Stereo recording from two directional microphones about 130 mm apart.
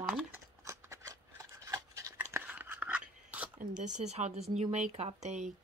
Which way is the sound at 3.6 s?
70° right (ahead or behind).